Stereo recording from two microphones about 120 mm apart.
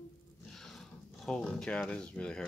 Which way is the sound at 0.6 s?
5° left (ahead or behind).